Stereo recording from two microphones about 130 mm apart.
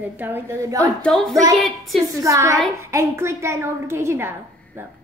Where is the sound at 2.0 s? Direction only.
25° right (ahead or behind).